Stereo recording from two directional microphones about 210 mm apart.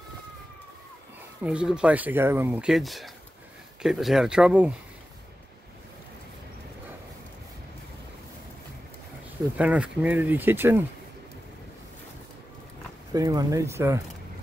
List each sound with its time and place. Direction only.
1.4 s speech: 5° right (ahead or behind)
9.6 s speech: 5° right (ahead or behind)
13.1 s speech: 15° right (ahead or behind)